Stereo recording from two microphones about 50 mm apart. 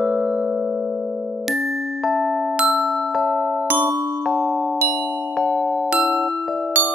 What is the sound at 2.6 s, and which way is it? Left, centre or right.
Glockenspiel, centre.